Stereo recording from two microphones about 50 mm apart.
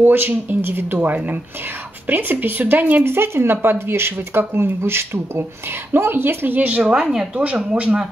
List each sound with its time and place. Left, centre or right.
0.0 s speech: right
2.0 s speech: right
3.1 s speech: right
6.8 s speech: centre
7.3 s speech: right